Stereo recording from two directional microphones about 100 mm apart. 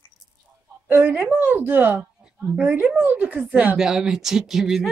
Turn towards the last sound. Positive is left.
turn(degrees=-5)  # may be behind; listen again after turning